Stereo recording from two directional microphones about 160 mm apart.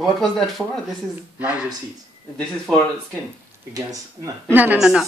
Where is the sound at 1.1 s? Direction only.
10° right (ahead or behind).